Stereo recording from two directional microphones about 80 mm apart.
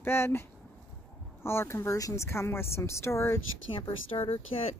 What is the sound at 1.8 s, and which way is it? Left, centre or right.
Speech, left.